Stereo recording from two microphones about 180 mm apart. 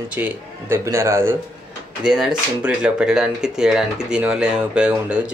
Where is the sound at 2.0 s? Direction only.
5° right (ahead or behind).